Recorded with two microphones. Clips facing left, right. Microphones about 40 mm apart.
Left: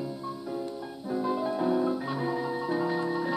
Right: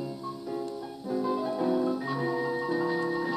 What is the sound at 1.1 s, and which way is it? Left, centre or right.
Music, left.